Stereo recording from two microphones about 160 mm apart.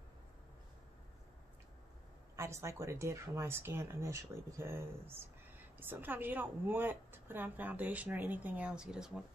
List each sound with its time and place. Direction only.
2.3 s a woman's voice: 15° right (ahead or behind)